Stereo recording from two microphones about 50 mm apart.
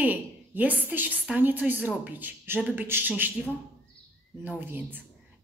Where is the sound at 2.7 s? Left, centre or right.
Right.